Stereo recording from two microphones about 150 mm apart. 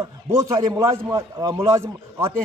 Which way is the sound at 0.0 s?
20° right (ahead or behind).